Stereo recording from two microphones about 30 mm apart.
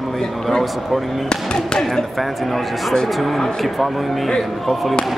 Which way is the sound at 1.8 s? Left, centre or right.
Centre.